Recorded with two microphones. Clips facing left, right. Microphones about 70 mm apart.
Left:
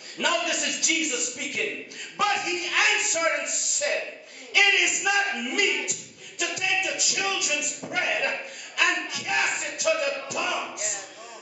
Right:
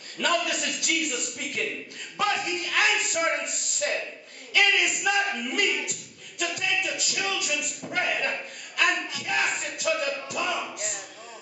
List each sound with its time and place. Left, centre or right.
0.2 s speech: centre